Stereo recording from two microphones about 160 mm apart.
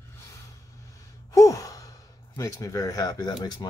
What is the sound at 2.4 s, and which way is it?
Speech, 20° left (ahead or behind).